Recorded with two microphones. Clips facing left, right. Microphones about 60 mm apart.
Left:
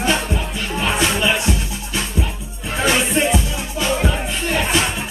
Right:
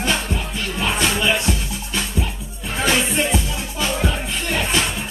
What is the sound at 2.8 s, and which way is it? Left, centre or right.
Music, centre.